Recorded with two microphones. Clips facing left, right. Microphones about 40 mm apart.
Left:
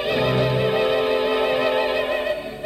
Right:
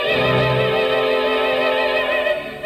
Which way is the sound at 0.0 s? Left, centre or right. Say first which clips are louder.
Right 3 dB; right.